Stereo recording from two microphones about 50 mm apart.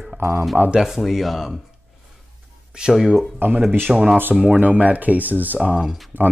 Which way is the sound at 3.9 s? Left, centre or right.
Centre.